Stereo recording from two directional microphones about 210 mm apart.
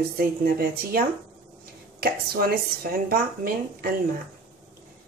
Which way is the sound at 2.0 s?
45° right (ahead or behind).